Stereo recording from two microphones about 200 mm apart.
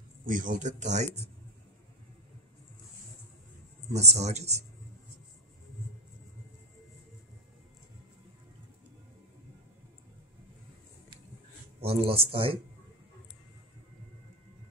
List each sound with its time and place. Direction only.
0.3 s speech: 40° right (ahead or behind)
3.9 s speech: 35° right (ahead or behind)
11.8 s a man's voice: 30° right (ahead or behind)